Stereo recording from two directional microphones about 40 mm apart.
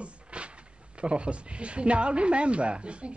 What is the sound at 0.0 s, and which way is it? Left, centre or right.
Speech, right.